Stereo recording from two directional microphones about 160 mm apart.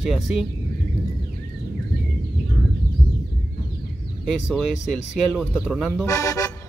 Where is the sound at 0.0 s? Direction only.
Centre (ahead or behind).